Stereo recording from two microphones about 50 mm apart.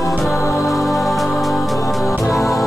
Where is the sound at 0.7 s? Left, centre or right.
Centre.